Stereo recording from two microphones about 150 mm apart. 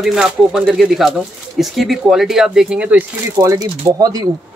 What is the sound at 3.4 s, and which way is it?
Speech, 25° right (ahead or behind).